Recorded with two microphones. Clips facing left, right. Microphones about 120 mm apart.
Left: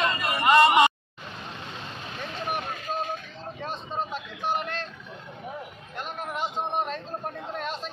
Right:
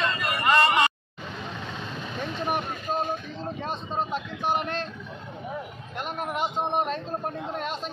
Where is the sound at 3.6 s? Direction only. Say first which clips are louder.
Right 1 dB; 20° right (ahead or behind).